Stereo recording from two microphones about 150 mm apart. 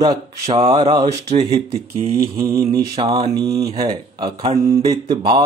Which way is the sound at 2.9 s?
40° right (ahead or behind).